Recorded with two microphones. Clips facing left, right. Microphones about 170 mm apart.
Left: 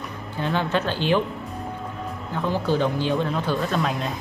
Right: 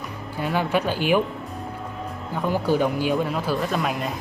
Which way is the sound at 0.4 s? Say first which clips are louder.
Right 1 dB; 5° right (ahead or behind).